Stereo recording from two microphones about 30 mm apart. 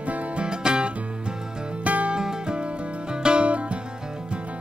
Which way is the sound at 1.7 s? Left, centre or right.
Right.